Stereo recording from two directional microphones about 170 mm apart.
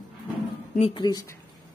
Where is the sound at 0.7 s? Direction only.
30° left (ahead or behind).